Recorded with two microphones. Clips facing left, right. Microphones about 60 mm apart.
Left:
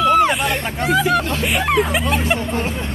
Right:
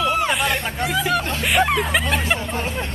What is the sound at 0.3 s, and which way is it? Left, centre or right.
Hubbub, centre.